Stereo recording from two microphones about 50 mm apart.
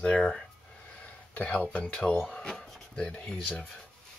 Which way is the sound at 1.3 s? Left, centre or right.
Left.